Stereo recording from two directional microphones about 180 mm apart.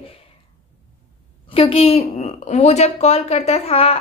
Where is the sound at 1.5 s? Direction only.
30° left (ahead or behind).